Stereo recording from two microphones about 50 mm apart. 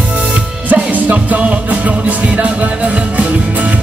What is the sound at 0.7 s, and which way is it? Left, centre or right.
Music, right.